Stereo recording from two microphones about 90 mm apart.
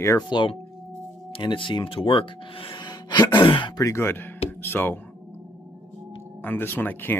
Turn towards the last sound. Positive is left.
turn(degrees=20)  # may be behind; listen again after turning